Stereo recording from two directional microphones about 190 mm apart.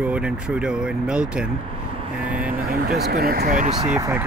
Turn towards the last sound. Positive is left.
turn(degrees=-10)  # may be behind; listen again after turning